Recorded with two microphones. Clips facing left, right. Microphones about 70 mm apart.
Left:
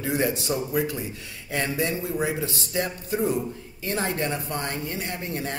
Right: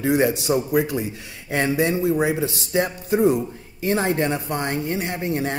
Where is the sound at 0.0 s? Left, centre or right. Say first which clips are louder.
Right 6 dB; centre.